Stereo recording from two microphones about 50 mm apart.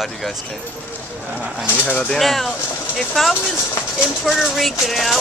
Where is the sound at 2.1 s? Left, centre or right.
Centre.